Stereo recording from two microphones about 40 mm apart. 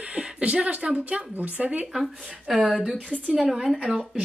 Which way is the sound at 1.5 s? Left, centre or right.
Right.